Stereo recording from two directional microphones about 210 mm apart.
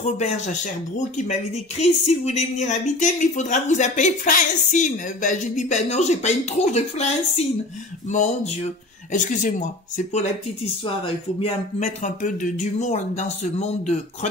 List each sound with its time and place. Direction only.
0.0 s speech: 35° left (ahead or behind)
11.3 s speech: 30° left (ahead or behind)